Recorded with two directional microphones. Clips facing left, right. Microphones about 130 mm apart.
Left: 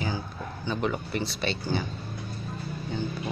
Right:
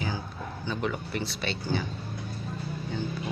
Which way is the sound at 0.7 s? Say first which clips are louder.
Left 3 dB; 25° left (ahead or behind).